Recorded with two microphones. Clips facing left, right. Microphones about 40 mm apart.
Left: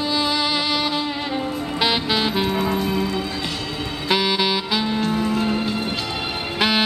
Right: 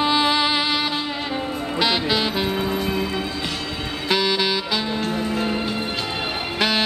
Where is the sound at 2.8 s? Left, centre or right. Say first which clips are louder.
Left 1 dB; centre.